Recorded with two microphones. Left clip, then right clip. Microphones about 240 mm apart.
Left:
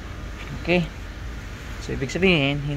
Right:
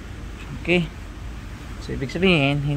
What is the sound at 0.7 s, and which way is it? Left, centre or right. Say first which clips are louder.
Speech: right 1 dB; centre.